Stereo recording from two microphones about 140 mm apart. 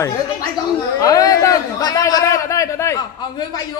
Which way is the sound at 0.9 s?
25° left (ahead or behind).